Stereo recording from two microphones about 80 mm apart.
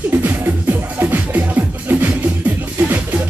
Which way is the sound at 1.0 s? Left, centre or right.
Right.